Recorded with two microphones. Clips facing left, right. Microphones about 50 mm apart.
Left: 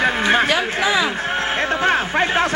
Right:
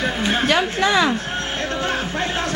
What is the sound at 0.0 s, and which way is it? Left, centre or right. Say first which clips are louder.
Speech: left 5 dB; left.